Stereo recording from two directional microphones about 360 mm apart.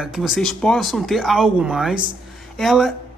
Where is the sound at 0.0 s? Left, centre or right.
Centre.